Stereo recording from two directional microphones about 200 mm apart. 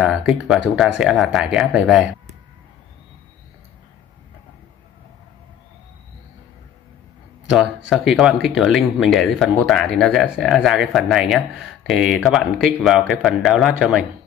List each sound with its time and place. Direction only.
0.0 s speech: 5° right (ahead or behind)
7.4 s speech: centre (ahead or behind)